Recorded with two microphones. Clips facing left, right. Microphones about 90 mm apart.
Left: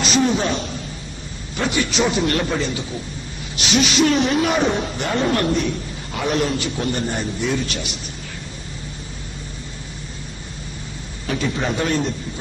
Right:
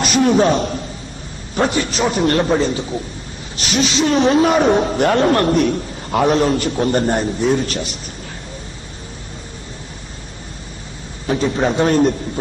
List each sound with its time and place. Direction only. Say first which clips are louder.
0.0 s a man's voice: right 5 dB; 45° right (ahead or behind)
11.2 s a man's voice: right 5 dB; 35° right (ahead or behind)